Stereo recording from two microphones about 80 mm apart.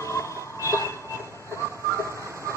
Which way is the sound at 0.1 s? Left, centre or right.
Left.